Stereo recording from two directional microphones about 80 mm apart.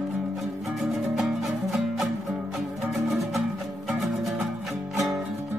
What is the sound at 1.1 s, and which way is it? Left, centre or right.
Music, centre.